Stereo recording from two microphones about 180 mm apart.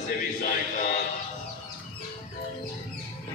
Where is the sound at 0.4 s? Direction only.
45° left (ahead or behind).